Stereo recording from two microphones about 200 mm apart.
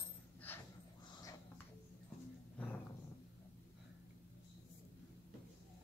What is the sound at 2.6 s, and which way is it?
Dog, 5° left (ahead or behind).